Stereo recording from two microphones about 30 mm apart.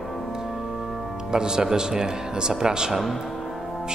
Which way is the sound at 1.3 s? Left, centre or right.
Right.